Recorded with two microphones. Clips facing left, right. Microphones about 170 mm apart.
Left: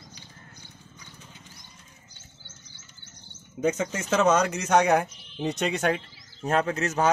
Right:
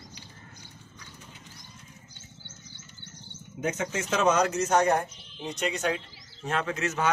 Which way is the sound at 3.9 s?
50° left (ahead or behind).